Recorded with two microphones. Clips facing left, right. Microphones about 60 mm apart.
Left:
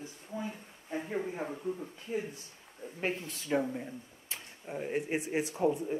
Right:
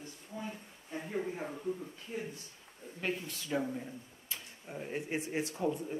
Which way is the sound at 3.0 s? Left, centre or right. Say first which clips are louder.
Left 2 dB; left.